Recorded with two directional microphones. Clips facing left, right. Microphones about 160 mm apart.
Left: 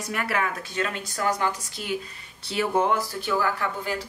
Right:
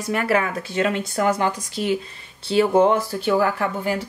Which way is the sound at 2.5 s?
30° right (ahead or behind).